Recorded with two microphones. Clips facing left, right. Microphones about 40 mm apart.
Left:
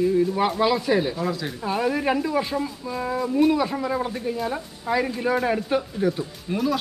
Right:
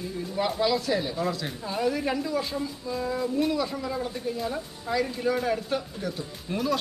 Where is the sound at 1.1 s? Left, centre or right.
Centre.